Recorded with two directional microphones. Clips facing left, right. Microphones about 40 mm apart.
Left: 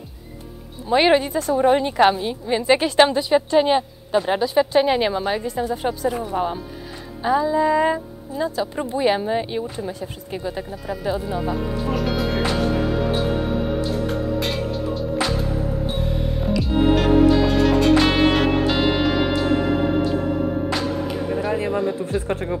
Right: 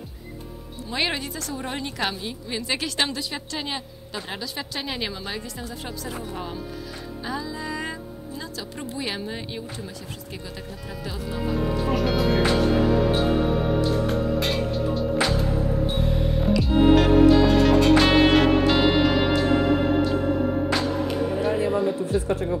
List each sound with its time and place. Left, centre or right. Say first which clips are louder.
0.8 s a woman's voice: left 11 dB; left
11.3 s music: left 1 dB; centre
22.3 s music: even; left